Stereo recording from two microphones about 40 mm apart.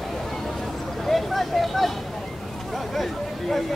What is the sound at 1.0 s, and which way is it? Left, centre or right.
Vehicle, centre.